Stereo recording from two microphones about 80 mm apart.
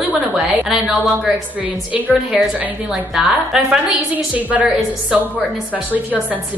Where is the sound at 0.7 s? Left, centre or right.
Centre.